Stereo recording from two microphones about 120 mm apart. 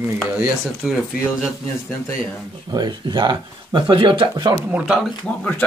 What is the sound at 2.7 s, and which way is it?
Speech, 35° right (ahead or behind).